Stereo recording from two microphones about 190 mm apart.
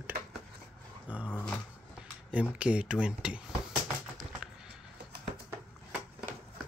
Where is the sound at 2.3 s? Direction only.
5° right (ahead or behind).